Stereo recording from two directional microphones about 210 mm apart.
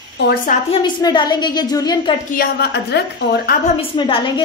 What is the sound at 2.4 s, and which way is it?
A woman's voice, 50° left (ahead or behind).